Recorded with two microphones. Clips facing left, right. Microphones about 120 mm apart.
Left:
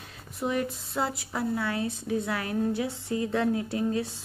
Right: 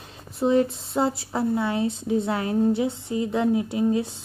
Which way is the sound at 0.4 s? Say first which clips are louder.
Right 8 dB; 25° right (ahead or behind).